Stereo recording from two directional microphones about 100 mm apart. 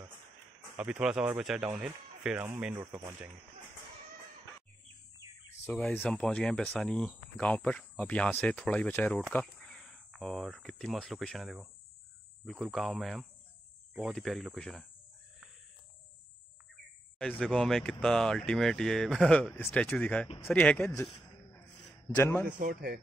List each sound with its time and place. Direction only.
0.7 s speech: 10° right (ahead or behind)
2.8 s speech: 50° right (ahead or behind)
5.6 s speech: 15° left (ahead or behind)
17.2 s speech: 10° left (ahead or behind)
22.0 s a man's voice: 25° left (ahead or behind)